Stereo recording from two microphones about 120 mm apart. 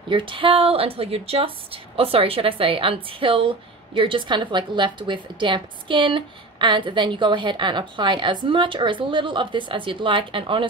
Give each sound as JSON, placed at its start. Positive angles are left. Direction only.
{"t": 0.1, "sound": "a woman's voice", "side_deg": -45}